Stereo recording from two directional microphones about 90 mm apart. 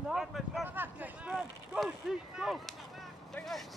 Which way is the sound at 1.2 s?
5° right (ahead or behind).